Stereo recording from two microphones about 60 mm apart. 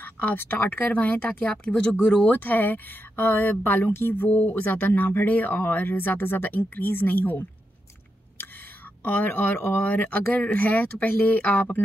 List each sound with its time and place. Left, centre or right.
0.0 s speech: left; by 2.1 s centre
2.2 s speech: left
9.0 s speech: left